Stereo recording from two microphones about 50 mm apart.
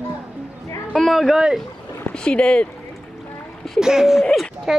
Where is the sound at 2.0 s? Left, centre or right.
Left.